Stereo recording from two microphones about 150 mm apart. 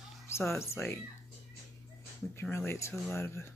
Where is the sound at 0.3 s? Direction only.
15° left (ahead or behind).